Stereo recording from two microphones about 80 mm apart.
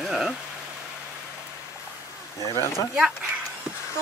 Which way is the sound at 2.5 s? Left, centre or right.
Left.